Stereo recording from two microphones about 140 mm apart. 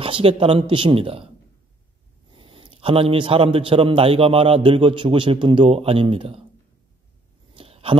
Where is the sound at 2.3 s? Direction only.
40° right (ahead or behind).